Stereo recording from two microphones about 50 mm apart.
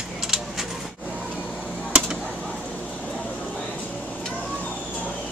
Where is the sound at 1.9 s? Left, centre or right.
Right.